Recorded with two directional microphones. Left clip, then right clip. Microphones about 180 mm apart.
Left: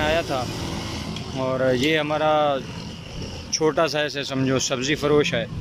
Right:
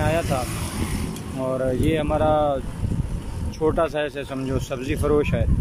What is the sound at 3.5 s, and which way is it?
Speech, centre (ahead or behind).